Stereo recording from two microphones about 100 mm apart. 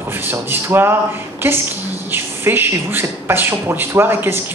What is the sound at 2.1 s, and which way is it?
Speech, 20° right (ahead or behind).